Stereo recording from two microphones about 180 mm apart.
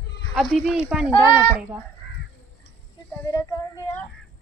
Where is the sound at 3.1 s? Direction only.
15° left (ahead or behind).